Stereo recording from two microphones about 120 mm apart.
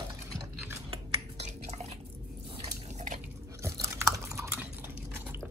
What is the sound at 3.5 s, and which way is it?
Chewing, 25° right (ahead or behind).